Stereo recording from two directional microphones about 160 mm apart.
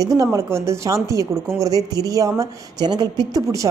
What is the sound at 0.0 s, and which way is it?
A woman's voice, 20° right (ahead or behind).